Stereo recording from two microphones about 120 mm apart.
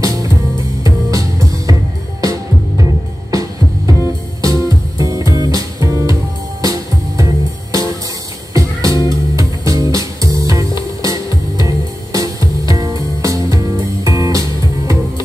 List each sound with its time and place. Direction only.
0.0 s music: 30° right (ahead or behind)